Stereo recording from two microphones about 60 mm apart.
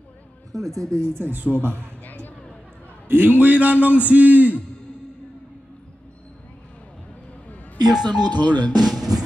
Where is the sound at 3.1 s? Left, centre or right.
Right.